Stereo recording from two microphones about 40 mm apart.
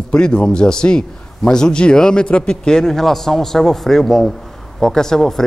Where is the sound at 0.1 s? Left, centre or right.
Left.